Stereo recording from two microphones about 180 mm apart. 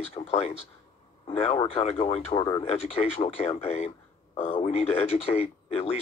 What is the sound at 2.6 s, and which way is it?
Speech, 35° left (ahead or behind).